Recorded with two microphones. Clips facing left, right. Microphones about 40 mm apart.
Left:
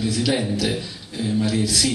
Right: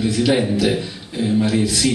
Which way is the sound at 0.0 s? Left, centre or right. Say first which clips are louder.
Right 5 dB; centre.